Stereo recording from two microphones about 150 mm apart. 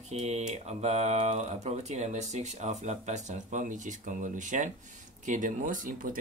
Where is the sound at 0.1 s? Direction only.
45° right (ahead or behind).